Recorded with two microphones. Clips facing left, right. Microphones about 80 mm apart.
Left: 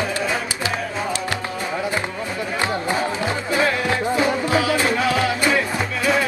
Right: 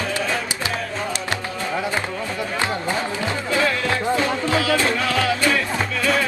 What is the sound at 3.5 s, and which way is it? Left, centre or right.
Music, left.